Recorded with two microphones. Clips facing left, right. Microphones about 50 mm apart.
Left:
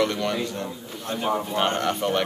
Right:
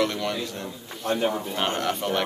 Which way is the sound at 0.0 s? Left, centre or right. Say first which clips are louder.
Left 2 dB; centre.